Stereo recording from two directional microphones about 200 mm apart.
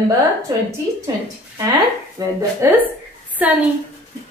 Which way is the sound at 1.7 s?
15° right (ahead or behind).